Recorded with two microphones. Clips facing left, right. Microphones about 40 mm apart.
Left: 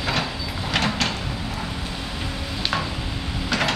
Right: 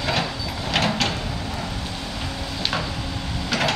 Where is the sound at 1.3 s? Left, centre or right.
Centre.